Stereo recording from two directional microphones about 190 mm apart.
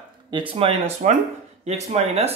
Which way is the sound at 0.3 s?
25° right (ahead or behind).